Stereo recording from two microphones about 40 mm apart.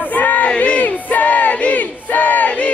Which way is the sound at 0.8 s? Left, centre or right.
Left.